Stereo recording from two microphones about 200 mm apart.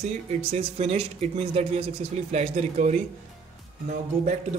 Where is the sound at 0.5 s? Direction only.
30° right (ahead or behind).